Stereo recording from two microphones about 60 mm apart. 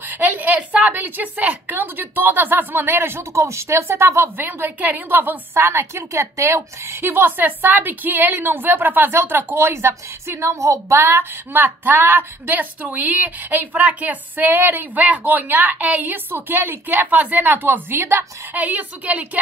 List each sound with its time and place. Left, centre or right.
0.1 s a sound: right
1.0 s a woman's voice: right
4.4 s a woman's voice: right
9.2 s a woman's voice: right
10.5 s a woman's voice: right
11.0 s a woman's voice: right
18.6 s a woman's voice: right